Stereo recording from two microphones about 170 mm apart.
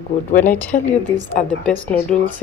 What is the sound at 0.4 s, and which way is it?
A woman's voice, 10° left (ahead or behind).